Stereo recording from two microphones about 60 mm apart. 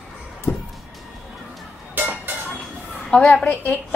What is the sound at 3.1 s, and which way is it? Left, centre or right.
Speech, centre.